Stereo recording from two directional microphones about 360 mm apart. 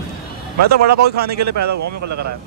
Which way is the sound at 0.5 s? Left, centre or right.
Right.